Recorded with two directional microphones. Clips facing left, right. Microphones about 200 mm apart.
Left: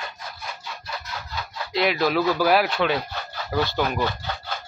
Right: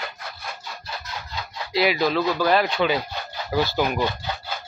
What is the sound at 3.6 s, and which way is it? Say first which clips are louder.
Speech: right 1 dB; 10° right (ahead or behind).